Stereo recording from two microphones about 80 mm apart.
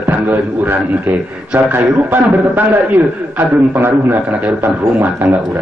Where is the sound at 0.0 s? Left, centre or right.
Right.